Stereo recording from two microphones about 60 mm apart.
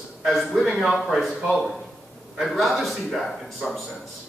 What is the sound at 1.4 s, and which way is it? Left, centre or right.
Speech, centre.